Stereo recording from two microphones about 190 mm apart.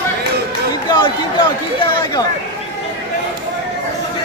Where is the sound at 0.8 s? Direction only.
25° left (ahead or behind).